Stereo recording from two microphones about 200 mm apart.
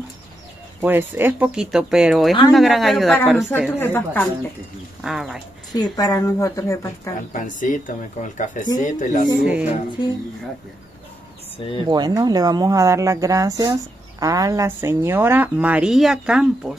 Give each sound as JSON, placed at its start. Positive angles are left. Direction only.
{"t": 0.7, "sound": "a woman's voice", "side_deg": -10}
{"t": 5.0, "sound": "speech", "side_deg": 0}
{"t": 5.8, "sound": "a woman's voice", "side_deg": 20}
{"t": 7.3, "sound": "speech", "side_deg": 40}
{"t": 9.4, "sound": "a woman's voice", "side_deg": -5}
{"t": 11.5, "sound": "speech", "side_deg": 25}
{"t": 11.9, "sound": "a woman's voice", "side_deg": -20}